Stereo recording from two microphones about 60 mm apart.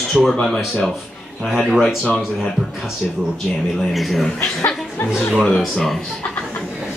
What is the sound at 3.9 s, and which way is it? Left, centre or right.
Speech, centre.